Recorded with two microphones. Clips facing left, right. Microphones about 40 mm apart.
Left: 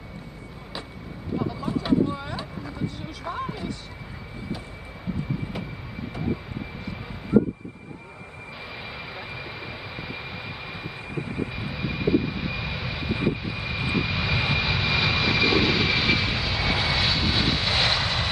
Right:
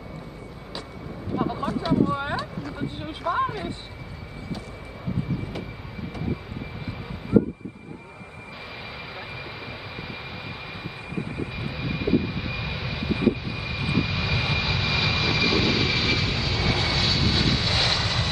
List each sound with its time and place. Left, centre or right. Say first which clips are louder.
1.4 s vehicle: right 5 dB; right
1.7 s boat: left 4 dB; centre
3.3 s speech: right 7 dB; centre
6.1 s vehicle: left 2 dB; centre
9.4 s vehicle: even; centre